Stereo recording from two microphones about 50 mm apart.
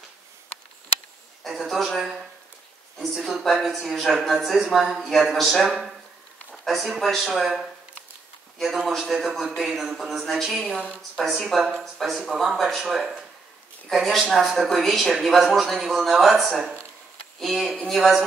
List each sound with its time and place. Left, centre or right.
1.4 s speech: centre
7.2 s speech: centre